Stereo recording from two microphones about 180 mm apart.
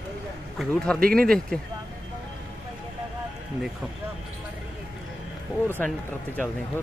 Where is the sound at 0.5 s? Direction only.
5° left (ahead or behind).